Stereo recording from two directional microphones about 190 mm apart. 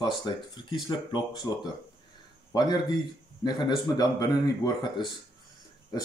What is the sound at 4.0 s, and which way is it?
Speech, 20° left (ahead or behind).